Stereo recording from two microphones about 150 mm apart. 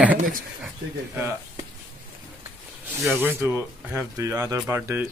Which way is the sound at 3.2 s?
15° right (ahead or behind).